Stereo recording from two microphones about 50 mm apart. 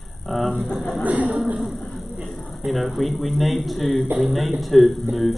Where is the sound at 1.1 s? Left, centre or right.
Right.